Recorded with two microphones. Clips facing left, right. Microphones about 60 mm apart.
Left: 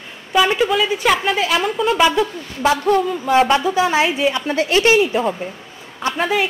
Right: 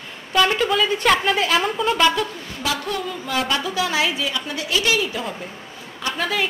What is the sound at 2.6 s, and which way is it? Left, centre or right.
A woman's voice, left.